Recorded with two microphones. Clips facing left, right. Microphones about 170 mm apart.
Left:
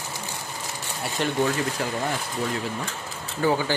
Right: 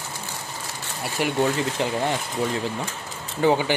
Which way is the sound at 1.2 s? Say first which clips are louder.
Right 2 dB; 10° right (ahead or behind).